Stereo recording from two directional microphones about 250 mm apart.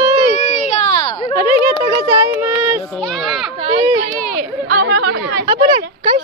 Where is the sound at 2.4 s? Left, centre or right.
Centre.